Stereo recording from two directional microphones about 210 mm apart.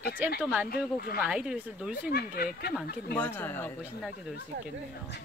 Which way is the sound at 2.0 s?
45° left (ahead or behind).